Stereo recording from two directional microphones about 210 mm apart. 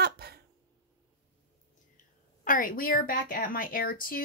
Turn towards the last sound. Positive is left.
turn(degrees=45)  # may be behind; listen again after turning